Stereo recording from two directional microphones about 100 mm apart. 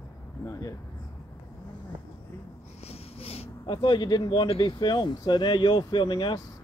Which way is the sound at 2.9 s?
85° left.